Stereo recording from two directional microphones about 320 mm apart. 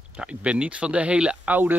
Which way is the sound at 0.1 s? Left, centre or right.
Centre.